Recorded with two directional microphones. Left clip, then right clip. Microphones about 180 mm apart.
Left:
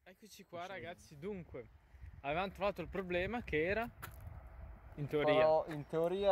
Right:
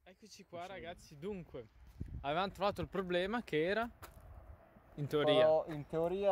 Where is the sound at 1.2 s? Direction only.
10° right (ahead or behind).